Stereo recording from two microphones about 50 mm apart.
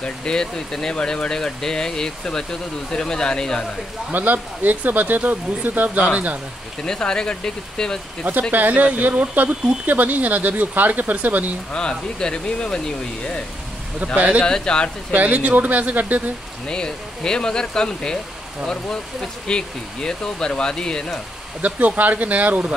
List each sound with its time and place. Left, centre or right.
0.0 s speech: centre
4.1 s speech: right
6.8 s speech: centre
8.3 s speech: right
11.7 s speech: centre
14.1 s speech: right
14.4 s speech: centre
15.1 s speech: right
16.6 s speech: centre
19.4 s speech: centre
21.5 s speech: right